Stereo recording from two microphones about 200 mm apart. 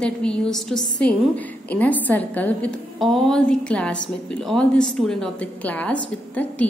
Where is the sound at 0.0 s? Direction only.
5° left (ahead or behind).